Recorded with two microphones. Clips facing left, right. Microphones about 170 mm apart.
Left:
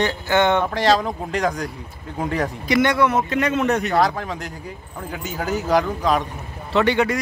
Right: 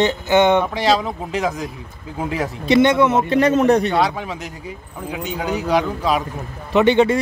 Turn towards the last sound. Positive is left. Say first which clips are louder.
# right 5 dB
turn(degrees=-25)  # may be behind; listen again after turning